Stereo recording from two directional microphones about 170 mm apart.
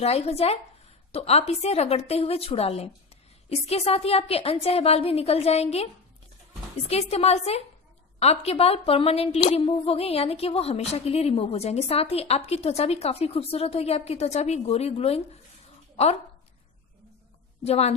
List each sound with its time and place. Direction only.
0.0 s a woman's voice: 35° left (ahead or behind)
6.9 s a woman's voice: 40° left (ahead or behind)
17.6 s a woman's voice: 40° left (ahead or behind)